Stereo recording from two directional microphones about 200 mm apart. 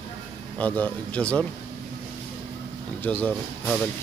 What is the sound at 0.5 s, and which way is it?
Speech, 10° left (ahead or behind).